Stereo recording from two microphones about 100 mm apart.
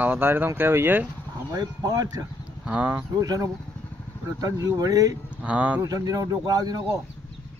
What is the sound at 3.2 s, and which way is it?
Speech, 35° right (ahead or behind).